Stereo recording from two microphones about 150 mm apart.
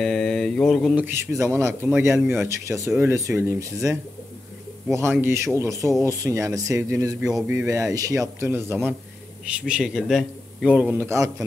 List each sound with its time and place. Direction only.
0.0 s mantra: 5° left (ahead or behind)
0.9 s speech: 15° right (ahead or behind)
9.7 s speech: 5° right (ahead or behind)